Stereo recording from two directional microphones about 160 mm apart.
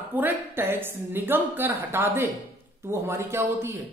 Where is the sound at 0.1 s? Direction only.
10° right (ahead or behind).